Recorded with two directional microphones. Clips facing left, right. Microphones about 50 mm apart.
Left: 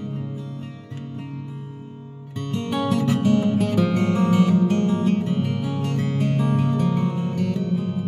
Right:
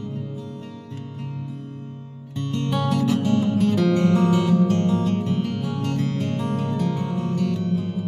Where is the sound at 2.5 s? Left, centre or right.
Centre.